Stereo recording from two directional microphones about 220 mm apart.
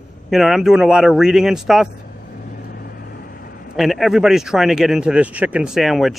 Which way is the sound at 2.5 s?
45° left (ahead or behind).